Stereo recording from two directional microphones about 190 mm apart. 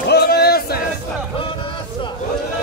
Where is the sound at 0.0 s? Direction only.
60° left (ahead or behind).